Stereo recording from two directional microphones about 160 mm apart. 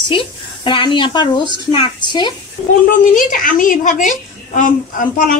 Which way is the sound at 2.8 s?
55° left (ahead or behind).